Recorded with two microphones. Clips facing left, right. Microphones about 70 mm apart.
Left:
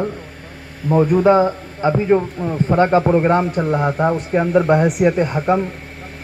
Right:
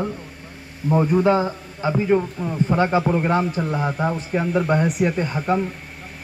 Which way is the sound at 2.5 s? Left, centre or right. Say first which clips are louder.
Left 5 dB; left.